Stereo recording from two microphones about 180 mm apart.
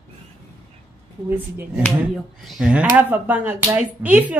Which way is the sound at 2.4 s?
Centre (ahead or behind).